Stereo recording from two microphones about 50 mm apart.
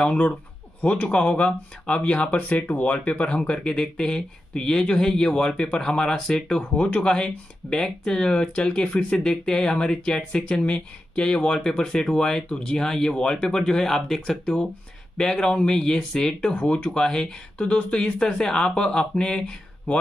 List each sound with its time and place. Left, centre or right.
0.7 s speech: left
2.3 s speech: left; by 6.6 s centre
6.7 s speech: left
12.7 s speech: centre
17.0 s speech: centre
17.6 s speech: left